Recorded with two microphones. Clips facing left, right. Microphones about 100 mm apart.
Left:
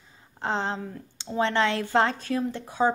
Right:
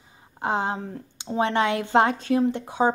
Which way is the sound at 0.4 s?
15° right (ahead or behind).